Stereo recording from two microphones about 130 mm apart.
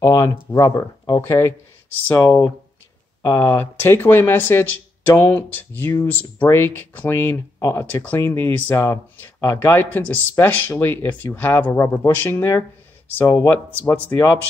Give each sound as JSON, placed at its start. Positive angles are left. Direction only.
{"t": 0.0, "sound": "speech", "side_deg": 20}